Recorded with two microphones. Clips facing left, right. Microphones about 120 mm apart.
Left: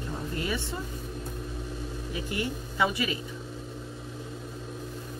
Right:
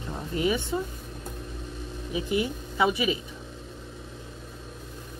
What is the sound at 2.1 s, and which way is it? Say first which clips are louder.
Speech: right 6 dB; 20° right (ahead or behind).